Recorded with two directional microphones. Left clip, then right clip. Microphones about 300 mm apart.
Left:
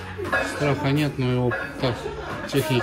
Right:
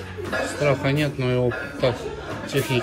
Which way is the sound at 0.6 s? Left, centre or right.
Centre.